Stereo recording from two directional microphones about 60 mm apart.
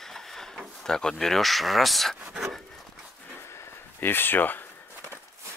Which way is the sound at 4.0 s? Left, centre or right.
Left.